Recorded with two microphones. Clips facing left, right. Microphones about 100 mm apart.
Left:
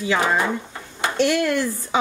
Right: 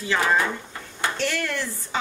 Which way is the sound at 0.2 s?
20° left (ahead or behind).